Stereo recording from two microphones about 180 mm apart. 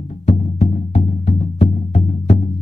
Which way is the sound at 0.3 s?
35° left (ahead or behind).